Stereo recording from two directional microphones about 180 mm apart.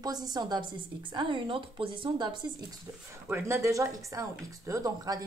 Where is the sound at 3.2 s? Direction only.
15° right (ahead or behind).